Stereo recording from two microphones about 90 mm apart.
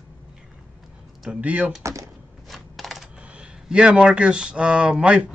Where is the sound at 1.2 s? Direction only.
15° right (ahead or behind).